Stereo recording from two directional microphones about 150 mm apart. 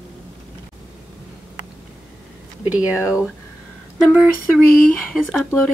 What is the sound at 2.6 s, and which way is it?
Speech, 10° right (ahead or behind).